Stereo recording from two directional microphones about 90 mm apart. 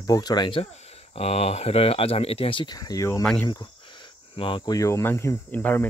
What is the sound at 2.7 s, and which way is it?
Speech, 45° left (ahead or behind).